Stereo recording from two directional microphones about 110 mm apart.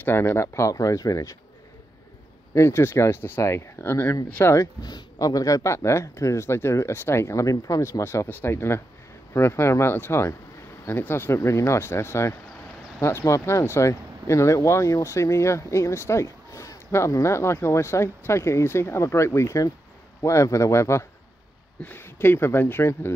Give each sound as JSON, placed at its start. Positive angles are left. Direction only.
{"t": 0.0, "sound": "speech", "side_deg": 20}
{"t": 2.5, "sound": "speech", "side_deg": 25}
{"t": 4.8, "sound": "speech", "side_deg": 35}